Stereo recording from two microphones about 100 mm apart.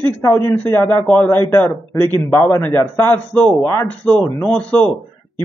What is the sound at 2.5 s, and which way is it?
A man's voice, 20° left (ahead or behind).